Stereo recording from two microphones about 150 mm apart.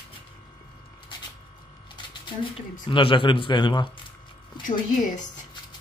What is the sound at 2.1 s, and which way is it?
Speech, 35° left (ahead or behind).